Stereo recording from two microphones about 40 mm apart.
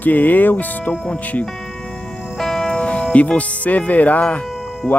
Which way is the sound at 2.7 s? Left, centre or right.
Left.